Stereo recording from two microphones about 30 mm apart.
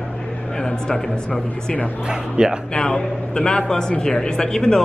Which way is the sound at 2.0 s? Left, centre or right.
Right.